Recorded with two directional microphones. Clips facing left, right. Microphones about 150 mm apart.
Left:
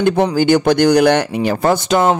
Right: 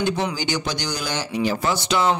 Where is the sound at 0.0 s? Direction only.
55° left (ahead or behind).